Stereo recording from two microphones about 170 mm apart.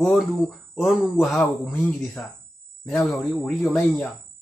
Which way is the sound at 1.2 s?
Centre (ahead or behind).